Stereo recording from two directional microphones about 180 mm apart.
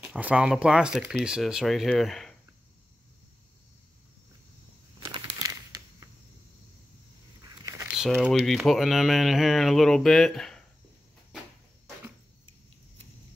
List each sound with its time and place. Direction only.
0.0 s speech: 5° right (ahead or behind)
5.0 s crumpling: 25° right (ahead or behind)
7.4 s a sound: 15° right (ahead or behind)
7.9 s speech: 5° right (ahead or behind)